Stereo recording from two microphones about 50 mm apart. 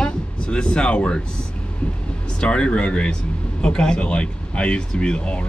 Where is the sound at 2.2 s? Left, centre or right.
Left.